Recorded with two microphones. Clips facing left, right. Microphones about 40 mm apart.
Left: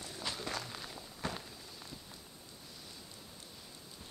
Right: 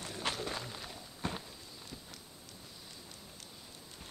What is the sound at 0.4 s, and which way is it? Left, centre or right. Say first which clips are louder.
Walk: right 1 dB; centre.